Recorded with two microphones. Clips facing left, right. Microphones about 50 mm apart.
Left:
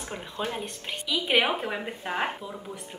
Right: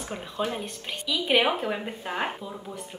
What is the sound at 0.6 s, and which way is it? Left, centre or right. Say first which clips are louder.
A woman's voice: even; centre.